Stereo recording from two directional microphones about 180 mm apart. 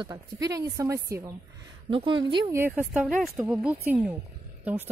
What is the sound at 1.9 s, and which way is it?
Speech, 30° right (ahead or behind).